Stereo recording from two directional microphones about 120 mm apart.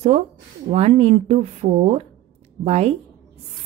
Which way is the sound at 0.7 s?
60° right (ahead or behind).